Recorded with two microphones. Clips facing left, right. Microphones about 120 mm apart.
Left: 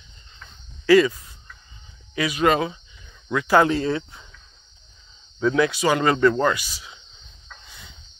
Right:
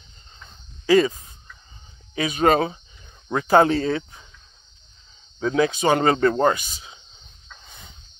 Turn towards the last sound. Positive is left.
turn(degrees=-40)  # may be behind; listen again after turning